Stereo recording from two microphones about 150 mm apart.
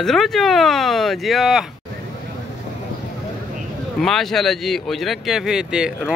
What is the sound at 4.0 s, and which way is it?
Speech, centre (ahead or behind).